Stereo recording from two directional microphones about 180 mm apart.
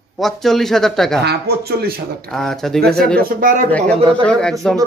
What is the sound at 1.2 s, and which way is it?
Speech, 65° right (ahead or behind).